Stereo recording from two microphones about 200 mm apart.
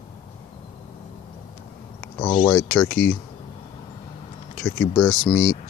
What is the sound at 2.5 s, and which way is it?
Speech, 10° left (ahead or behind).